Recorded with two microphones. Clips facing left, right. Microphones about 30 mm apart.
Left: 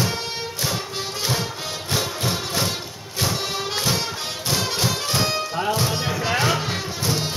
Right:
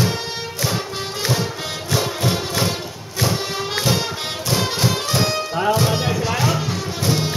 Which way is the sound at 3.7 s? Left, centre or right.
Centre.